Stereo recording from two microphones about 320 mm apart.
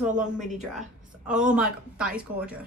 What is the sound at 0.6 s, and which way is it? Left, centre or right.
A woman's voice, centre.